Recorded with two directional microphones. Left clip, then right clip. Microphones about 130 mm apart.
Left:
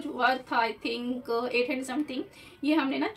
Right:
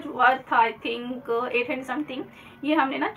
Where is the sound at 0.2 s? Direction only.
40° left (ahead or behind).